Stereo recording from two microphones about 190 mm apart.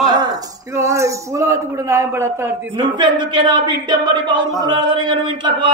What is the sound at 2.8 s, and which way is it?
Speech, 25° right (ahead or behind).